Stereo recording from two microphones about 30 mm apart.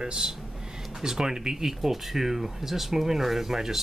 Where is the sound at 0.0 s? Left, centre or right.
Right.